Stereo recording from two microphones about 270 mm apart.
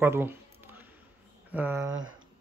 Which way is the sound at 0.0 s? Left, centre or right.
Centre.